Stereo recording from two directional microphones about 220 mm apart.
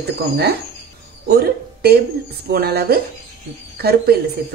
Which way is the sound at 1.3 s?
45° right (ahead or behind).